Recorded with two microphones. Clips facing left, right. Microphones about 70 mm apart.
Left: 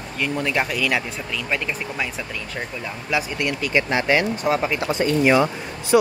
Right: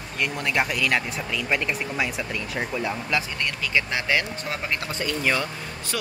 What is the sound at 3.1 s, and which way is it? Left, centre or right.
Speech, centre.